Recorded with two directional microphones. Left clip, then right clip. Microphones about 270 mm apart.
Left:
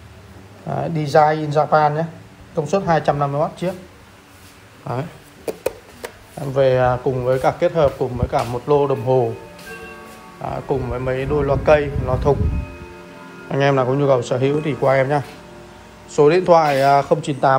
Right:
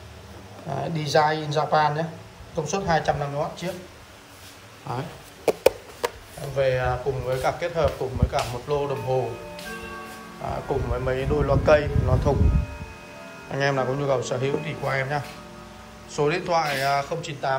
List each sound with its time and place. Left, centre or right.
0.7 s speech: centre
4.8 s a sound: centre
6.5 s speech: centre
10.4 s a man's voice: centre
13.5 s speech: centre